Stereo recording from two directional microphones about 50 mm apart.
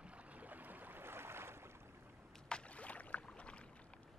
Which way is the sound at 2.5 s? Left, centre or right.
Left.